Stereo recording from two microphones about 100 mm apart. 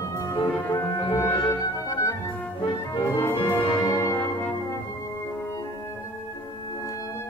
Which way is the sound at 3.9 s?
30° left (ahead or behind).